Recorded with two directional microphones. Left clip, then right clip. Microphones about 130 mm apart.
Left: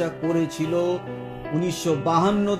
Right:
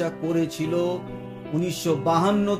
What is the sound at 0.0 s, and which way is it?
Music, 40° left (ahead or behind).